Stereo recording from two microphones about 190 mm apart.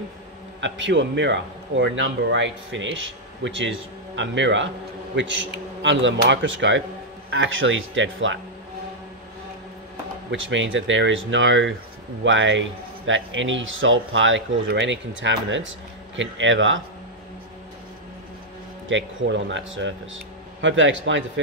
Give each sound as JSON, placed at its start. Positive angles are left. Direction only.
{"t": 0.6, "sound": "a man's voice", "side_deg": -75}
{"t": 7.2, "sound": "speech", "side_deg": -90}
{"t": 10.3, "sound": "speech", "side_deg": -85}
{"t": 18.9, "sound": "speech", "side_deg": -80}